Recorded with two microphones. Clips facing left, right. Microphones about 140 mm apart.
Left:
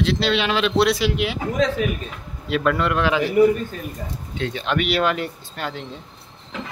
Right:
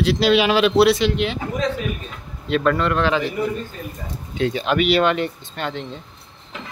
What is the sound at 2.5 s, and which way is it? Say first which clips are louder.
Speech: right 2 dB; 5° left (ahead or behind).